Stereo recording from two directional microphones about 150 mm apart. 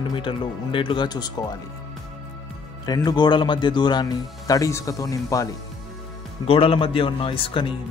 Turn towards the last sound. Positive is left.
turn(degrees=35)  # may be behind; listen again after turning